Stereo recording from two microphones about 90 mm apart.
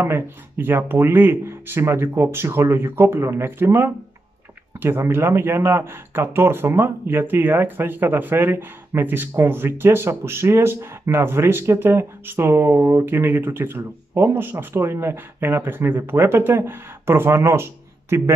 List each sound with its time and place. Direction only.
0.0 s speech: 25° right (ahead or behind)